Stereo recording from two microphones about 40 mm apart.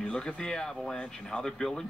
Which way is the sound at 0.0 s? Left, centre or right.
Left.